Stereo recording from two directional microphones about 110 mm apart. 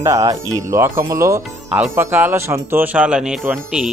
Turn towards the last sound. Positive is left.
turn(degrees=-5)  # may be behind; listen again after turning